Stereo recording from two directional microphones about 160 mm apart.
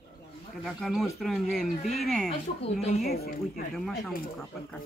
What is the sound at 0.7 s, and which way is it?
Speech, centre (ahead or behind).